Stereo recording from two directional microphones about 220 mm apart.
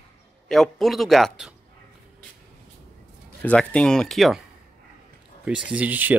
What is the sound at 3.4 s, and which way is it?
Speech, 5° left (ahead or behind).